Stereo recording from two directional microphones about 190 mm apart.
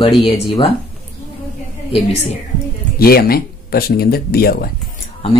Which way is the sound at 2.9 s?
50° left (ahead or behind).